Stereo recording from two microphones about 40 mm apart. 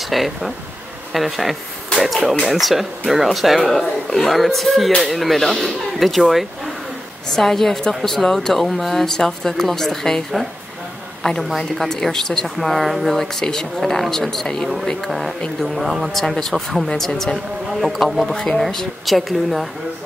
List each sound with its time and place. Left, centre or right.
0.1 s a woman's voice: centre
7.2 s speech: centre
11.4 s a woman's voice: centre
18.3 s speech: centre
18.6 s a woman's voice: centre